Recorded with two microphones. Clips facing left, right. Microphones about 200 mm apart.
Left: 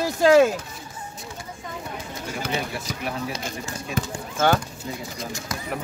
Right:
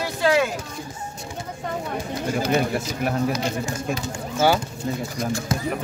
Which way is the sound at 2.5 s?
50° right (ahead or behind).